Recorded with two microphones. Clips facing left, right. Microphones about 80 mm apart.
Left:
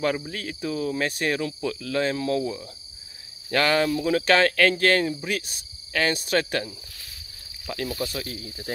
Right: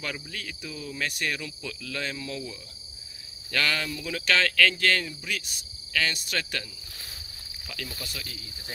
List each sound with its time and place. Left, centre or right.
0.0 s speech: left
0.7 s cricket: left
1.0 s speech: left
2.2 s cricket: left
3.4 s cricket: left
4.0 s speech: left
8.0 s cricket: left